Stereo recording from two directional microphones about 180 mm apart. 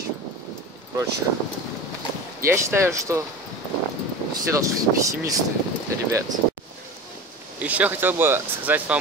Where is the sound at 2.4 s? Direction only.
15° right (ahead or behind).